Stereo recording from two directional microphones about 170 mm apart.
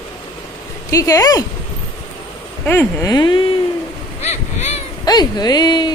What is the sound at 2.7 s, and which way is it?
Speech, 10° left (ahead or behind).